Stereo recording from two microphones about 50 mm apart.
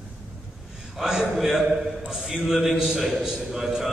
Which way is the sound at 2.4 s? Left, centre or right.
Centre.